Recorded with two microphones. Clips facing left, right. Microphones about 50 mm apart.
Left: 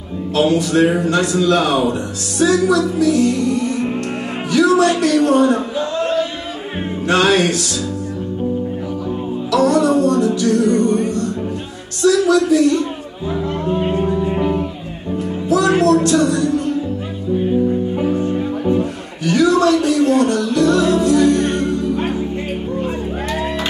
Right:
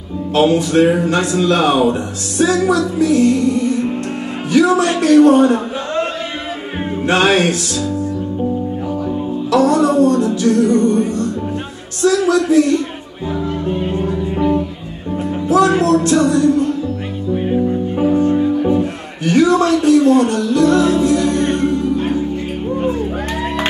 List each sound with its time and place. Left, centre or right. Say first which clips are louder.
0.4 s a man's voice: right 2 dB; right
4.5 s a man's voice: even; right
7.1 s speech: right 1 dB; right
9.5 s music: right 1 dB; right
12.0 s a man's voice: even; right
14.0 s music: even; centre
15.6 s a sound: even; left
15.9 s speech: right 1 dB; right
19.2 s a sound: right 1 dB; right
20.2 s music: right 1 dB; right